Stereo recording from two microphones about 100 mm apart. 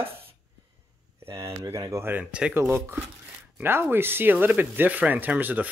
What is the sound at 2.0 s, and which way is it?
Speech, 20° right (ahead or behind).